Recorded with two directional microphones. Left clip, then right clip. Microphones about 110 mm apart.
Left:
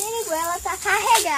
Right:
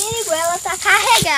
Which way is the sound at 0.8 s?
5° right (ahead or behind).